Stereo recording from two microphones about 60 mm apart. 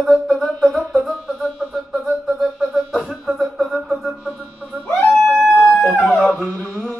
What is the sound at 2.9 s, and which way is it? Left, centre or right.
Music, centre.